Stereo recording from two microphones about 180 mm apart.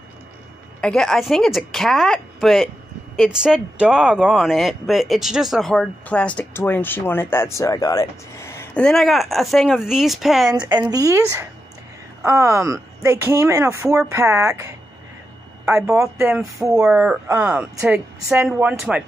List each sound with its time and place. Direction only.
0.7 s speech: 5° left (ahead or behind)
8.8 s speech: centre (ahead or behind)
10.9 s speech: 20° right (ahead or behind)